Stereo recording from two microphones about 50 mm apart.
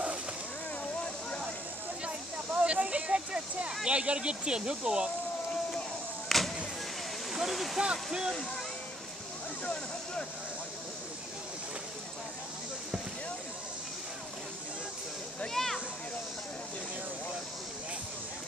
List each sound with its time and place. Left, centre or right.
2.0 s snake: right
3.8 s speech: right
6.2 s vehicle: centre
7.3 s speech: centre
7.8 s speech: centre
15.5 s a sound: centre